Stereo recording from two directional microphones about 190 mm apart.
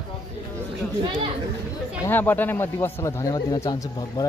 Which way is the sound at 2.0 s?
10° left (ahead or behind).